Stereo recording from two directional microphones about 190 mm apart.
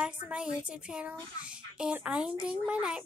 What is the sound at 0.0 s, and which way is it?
A woman's voice, 5° right (ahead or behind).